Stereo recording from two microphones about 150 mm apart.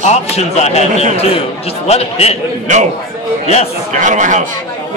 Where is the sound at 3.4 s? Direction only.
45° left (ahead or behind).